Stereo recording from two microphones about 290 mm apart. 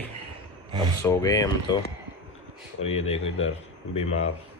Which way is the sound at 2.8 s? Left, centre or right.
Left.